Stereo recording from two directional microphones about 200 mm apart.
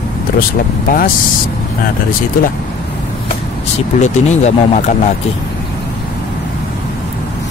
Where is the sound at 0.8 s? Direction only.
45° left (ahead or behind).